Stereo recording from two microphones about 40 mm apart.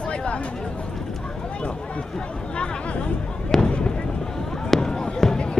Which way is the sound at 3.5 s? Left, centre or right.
Centre.